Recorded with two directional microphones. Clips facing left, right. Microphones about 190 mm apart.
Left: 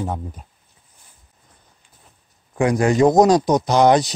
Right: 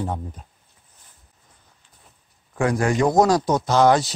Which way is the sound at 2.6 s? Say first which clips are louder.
Left 4 dB; 20° left (ahead or behind).